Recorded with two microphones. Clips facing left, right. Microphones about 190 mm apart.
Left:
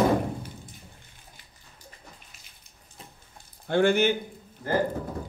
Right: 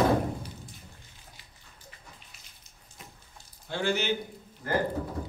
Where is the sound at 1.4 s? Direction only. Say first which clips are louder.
Even; 50° left (ahead or behind).